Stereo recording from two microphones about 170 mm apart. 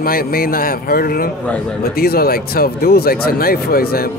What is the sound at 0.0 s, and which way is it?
Speech, 60° left (ahead or behind).